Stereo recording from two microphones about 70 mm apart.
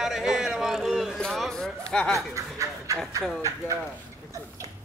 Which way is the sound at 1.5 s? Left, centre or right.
Centre.